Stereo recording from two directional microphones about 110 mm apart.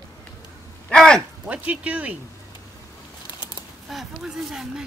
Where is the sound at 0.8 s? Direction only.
5° left (ahead or behind).